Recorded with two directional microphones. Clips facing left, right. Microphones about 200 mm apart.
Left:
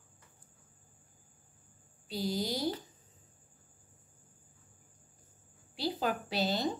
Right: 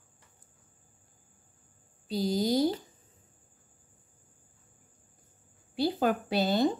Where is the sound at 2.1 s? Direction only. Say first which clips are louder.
Right 7 dB; 40° right (ahead or behind).